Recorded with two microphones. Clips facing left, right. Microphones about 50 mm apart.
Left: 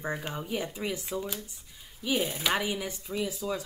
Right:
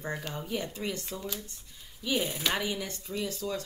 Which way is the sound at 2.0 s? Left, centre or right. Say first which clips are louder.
Left 1 dB; centre.